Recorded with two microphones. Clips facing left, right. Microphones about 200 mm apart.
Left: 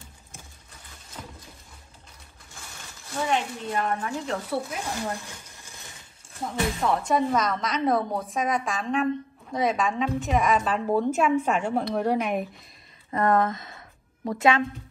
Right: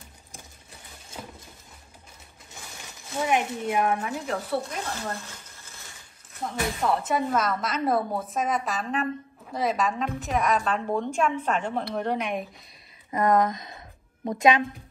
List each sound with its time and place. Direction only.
1.2 s a sound: 5° right (ahead or behind)
3.3 s speech: 10° right (ahead or behind)
4.8 s frying: 15° left (ahead or behind)
6.9 s a woman's voice: 5° right (ahead or behind)
13.1 s speech: 15° right (ahead or behind)